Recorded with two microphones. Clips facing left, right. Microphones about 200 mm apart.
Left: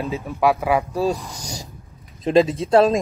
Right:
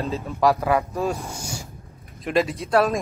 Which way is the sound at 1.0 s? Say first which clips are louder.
Left 3 dB; 35° left (ahead or behind).